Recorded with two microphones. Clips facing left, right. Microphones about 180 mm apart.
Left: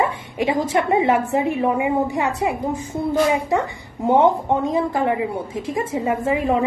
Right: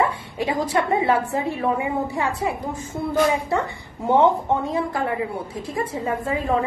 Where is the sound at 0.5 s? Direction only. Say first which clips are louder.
Left 2 dB; 20° left (ahead or behind).